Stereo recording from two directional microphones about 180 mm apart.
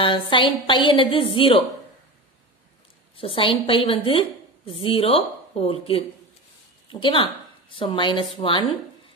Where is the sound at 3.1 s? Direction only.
30° left (ahead or behind).